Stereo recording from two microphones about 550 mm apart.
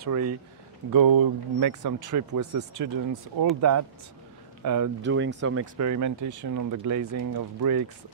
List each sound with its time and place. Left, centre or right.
0.0 s speech: right
0.9 s speech: right
4.6 s speech: right